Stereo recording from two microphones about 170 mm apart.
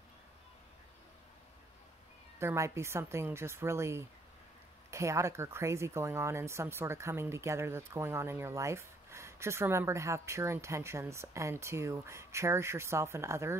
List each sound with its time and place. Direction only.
2.3 s speech: 15° right (ahead or behind)